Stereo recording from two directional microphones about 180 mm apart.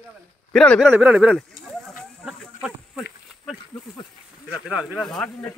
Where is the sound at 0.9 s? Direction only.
10° right (ahead or behind).